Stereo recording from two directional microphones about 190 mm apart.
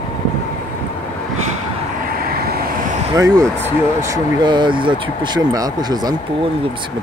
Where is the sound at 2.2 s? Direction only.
50° right (ahead or behind).